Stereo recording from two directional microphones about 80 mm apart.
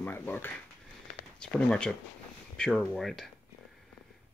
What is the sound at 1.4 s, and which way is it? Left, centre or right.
Speech, centre.